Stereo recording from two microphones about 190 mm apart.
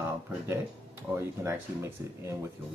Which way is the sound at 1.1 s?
10° right (ahead or behind).